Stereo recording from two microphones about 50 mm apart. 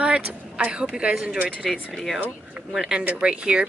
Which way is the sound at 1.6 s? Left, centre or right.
Centre.